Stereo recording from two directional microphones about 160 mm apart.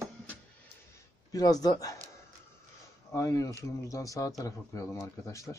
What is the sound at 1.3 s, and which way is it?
Speech, 25° left (ahead or behind).